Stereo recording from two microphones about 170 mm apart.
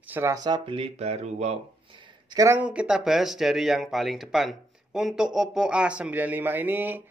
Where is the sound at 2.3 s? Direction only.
20° right (ahead or behind).